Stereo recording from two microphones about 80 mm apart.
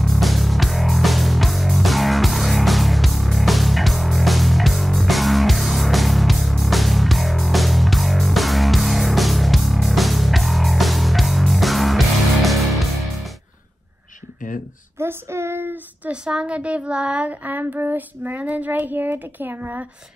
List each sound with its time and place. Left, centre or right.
0.0 s music: centre
15.0 s child singing: right
16.1 s speech: centre